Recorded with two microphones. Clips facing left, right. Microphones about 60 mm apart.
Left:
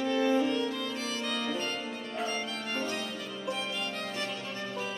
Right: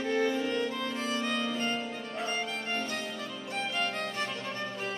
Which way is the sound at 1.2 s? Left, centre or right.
Right.